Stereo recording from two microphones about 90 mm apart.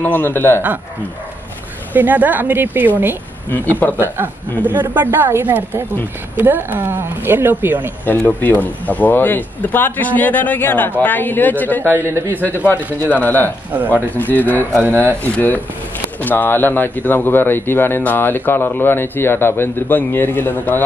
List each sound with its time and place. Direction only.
0.0 s speech: 25° left (ahead or behind)
2.0 s speech: 20° right (ahead or behind)
3.4 s speech: 20° left (ahead or behind)
4.6 s speech: 20° right (ahead or behind)
8.0 s speech: 20° left (ahead or behind)
11.8 s speech: 25° right (ahead or behind)
12.5 s speech: 25° left (ahead or behind)